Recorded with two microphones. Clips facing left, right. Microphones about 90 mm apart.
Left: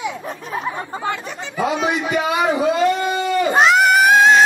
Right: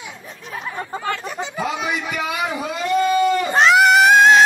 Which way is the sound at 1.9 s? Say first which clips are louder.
Left 5 dB; 35° left (ahead or behind).